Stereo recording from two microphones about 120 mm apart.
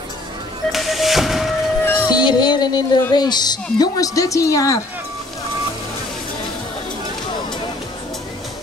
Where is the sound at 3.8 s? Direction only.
30° left (ahead or behind).